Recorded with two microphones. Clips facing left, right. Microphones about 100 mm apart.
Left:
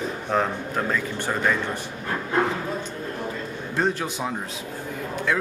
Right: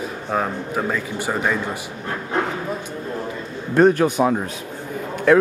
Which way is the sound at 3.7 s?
55° right (ahead or behind).